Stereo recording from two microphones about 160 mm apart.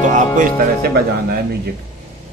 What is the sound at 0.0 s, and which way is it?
Music, 55° right (ahead or behind).